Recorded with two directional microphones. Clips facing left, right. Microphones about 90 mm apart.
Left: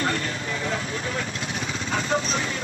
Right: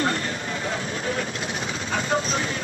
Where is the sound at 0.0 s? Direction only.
30° right (ahead or behind).